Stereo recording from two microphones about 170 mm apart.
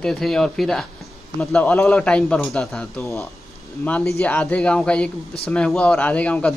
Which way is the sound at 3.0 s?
15° left (ahead or behind).